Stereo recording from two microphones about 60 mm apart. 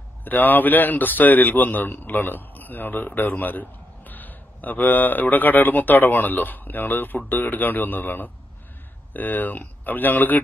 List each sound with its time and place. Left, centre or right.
0.2 s a man's voice: left